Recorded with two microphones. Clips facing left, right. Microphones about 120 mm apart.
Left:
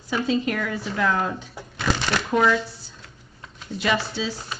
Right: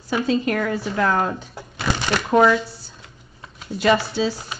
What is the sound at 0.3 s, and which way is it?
Speech, 45° right (ahead or behind).